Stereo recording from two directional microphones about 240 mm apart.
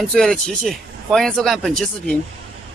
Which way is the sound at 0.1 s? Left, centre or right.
Centre.